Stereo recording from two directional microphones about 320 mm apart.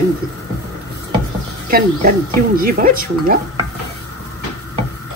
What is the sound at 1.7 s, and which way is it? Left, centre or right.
Speech, right.